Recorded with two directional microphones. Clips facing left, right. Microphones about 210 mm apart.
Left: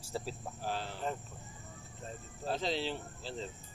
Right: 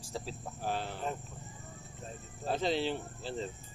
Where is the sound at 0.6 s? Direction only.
55° right (ahead or behind).